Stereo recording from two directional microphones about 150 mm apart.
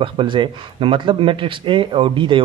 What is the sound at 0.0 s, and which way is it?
Speech, 35° right (ahead or behind).